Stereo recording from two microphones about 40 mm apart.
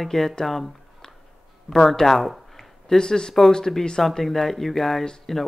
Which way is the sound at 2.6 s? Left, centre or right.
Centre.